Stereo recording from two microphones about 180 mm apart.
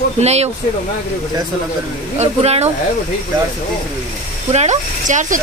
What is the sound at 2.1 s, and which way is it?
Speech, 35° right (ahead or behind).